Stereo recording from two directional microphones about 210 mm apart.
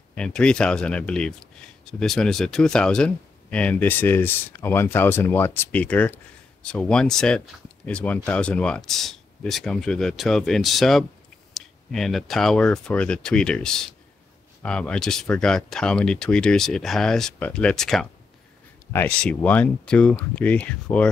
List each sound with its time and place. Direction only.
0.1 s speech: 5° left (ahead or behind)